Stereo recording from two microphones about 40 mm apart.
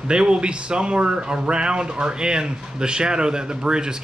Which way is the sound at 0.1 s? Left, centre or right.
Right.